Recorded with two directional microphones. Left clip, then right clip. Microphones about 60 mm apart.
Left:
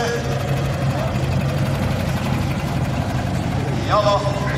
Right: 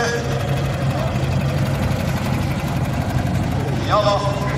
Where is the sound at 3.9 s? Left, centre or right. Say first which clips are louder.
Even; left.